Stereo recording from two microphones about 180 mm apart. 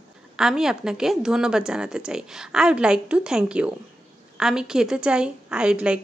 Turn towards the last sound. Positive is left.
turn(degrees=-5)  # may be behind; listen again after turning